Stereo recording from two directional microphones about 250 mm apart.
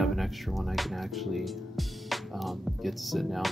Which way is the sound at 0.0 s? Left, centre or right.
Centre.